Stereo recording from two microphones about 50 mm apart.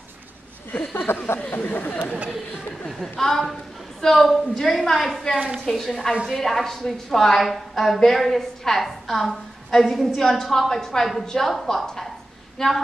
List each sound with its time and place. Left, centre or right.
0.9 s speech: left
1.4 s speech: left
2.9 s a woman's voice: centre
12.5 s a sound: centre